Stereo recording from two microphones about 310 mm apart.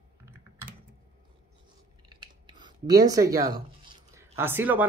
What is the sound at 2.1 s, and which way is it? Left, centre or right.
Typing, centre.